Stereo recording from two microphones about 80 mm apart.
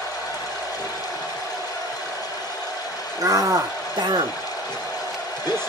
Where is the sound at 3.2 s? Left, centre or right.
Right.